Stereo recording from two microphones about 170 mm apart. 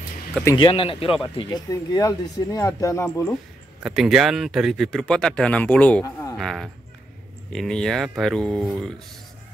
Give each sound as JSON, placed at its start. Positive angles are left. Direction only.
{"t": 0.6, "sound": "speech", "side_deg": 30}
{"t": 3.8, "sound": "speech", "side_deg": 0}